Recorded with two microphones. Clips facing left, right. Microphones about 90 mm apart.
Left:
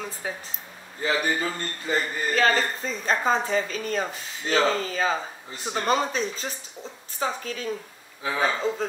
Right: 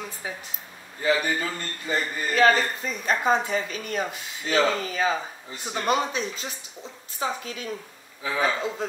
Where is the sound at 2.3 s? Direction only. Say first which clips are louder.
Right 3 dB; 35° left (ahead or behind).